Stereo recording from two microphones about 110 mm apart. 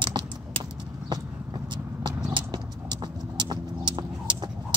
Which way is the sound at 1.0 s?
40° right (ahead or behind).